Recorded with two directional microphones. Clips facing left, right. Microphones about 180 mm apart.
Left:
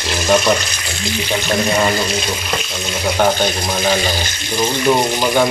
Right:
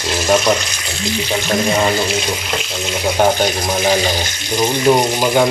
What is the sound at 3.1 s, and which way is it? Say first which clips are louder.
Speech: right 1 dB; 15° right (ahead or behind).